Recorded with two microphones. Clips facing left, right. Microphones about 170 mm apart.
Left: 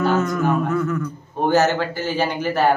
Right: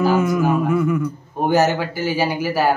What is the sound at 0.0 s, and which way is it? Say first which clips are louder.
A man's voice: right 2 dB; 10° right (ahead or behind).